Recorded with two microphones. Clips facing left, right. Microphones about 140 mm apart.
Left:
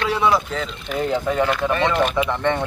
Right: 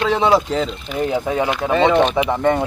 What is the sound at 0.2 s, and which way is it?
Speech, 30° right (ahead or behind).